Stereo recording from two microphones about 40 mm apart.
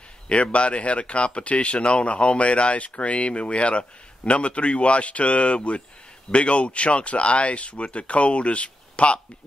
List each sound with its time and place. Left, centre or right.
0.3 s speech: left